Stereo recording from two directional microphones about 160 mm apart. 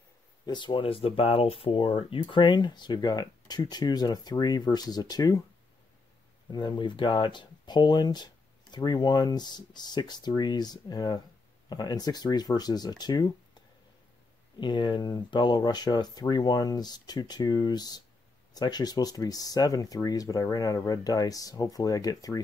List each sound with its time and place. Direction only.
0.5 s speech: 30° left (ahead or behind)
6.5 s speech: 30° left (ahead or behind)
14.6 s speech: 30° left (ahead or behind)